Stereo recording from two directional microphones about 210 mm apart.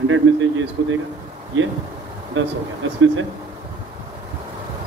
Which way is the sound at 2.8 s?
65° right (ahead or behind).